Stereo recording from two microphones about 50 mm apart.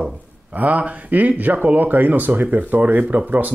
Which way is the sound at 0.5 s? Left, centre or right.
Right.